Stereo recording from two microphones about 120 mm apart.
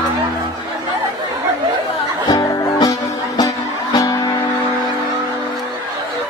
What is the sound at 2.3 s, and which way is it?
Music, 35° left (ahead or behind).